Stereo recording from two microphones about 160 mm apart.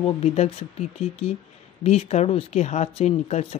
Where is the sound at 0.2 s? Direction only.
40° left (ahead or behind).